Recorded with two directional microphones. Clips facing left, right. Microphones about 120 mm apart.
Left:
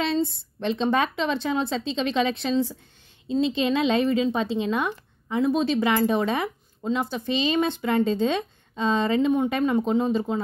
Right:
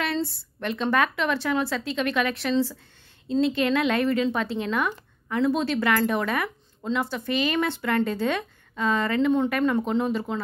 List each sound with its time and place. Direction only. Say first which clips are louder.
0.0 s a woman's voice: left 3 dB; 20° left (ahead or behind)